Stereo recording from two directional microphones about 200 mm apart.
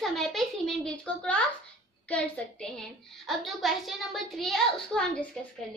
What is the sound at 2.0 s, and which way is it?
A woman's voice, 5° left (ahead or behind).